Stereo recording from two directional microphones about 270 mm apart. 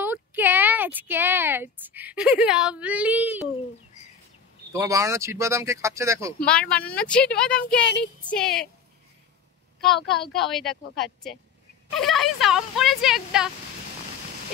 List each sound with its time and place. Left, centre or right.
0.0 s speech: centre
4.7 s speech: centre
6.4 s speech: centre
9.8 s speech: centre